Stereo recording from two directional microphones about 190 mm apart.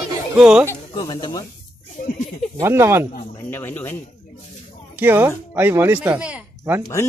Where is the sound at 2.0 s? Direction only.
45° left (ahead or behind).